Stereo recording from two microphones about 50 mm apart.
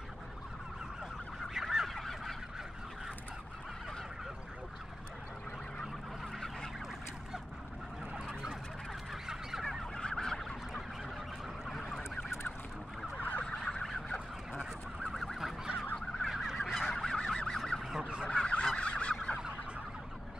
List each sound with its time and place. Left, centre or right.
1.5 s goose: centre
1.9 s goose: centre
8.1 s fowl: centre
9.9 s fowl: centre
13.2 s fowl: left
13.5 s fowl: centre
14.0 s fowl: left
14.6 s fowl: centre
17.9 s fowl: centre
18.3 s fowl: left